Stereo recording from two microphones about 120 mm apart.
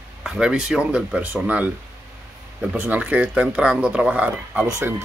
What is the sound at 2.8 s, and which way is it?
Speech, 15° right (ahead or behind).